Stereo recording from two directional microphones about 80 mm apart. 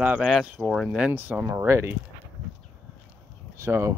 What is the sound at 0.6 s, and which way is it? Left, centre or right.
Speech, centre.